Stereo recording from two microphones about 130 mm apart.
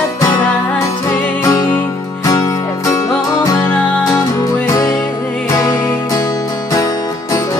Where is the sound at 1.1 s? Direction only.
30° left (ahead or behind).